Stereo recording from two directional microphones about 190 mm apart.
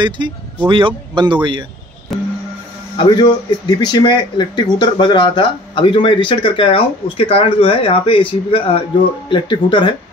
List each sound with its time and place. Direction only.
0.7 s a man's voice: 25° right (ahead or behind)
2.1 s music: centre (ahead or behind)
3.0 s speech: 25° left (ahead or behind)